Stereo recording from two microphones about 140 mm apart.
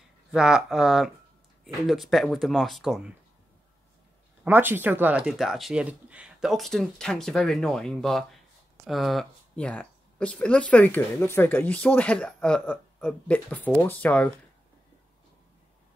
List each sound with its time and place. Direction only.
0.3 s speech: 5° right (ahead or behind)
4.5 s speech: 15° right (ahead or behind); by 14.3 s 10° left (ahead or behind)